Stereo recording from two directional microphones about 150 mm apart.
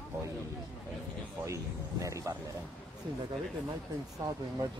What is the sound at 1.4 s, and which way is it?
Speech, 20° right (ahead or behind).